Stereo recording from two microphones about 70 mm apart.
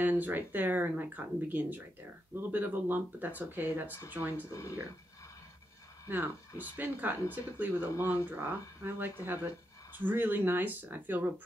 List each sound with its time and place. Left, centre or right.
0.0 s speech: right
4.5 s speech: left
6.0 s speech: right